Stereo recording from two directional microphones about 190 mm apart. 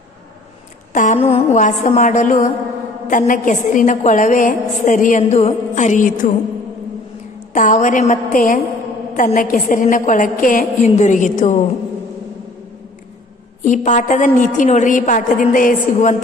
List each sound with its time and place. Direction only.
0.9 s a woman's voice: 40° left (ahead or behind)
7.5 s a woman's voice: 40° left (ahead or behind)
13.7 s a woman's voice: 40° left (ahead or behind)